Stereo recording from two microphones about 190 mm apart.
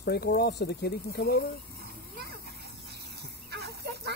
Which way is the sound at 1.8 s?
55° right (ahead or behind).